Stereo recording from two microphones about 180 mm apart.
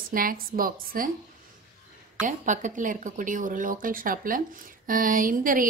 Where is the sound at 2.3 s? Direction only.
45° right (ahead or behind).